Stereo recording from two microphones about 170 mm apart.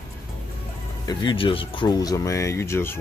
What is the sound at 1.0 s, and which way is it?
Speech, 25° left (ahead or behind).